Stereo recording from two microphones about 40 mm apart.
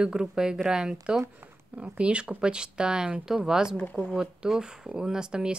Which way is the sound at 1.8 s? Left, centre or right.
Right.